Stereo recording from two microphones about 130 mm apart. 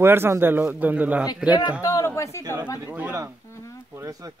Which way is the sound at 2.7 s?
15° right (ahead or behind).